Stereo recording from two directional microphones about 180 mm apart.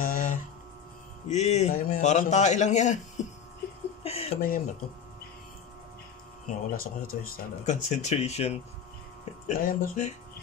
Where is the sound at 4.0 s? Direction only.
35° left (ahead or behind).